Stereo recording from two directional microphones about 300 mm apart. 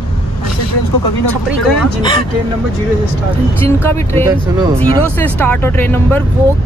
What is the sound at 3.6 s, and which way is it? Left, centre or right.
Speech, centre.